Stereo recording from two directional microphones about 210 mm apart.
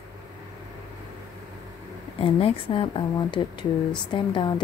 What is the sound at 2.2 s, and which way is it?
Speech, 25° left (ahead or behind).